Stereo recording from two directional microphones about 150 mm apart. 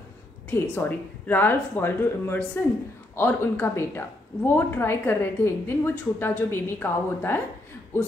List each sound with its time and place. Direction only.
0.5 s a woman's voice: 15° left (ahead or behind)